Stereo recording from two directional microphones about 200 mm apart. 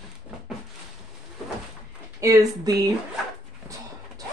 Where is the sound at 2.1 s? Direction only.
15° right (ahead or behind).